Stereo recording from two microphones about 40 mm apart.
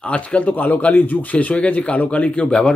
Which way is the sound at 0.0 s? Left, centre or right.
Left.